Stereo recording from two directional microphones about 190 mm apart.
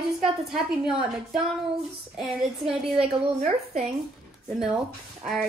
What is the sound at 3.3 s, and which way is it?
Speech, 35° right (ahead or behind).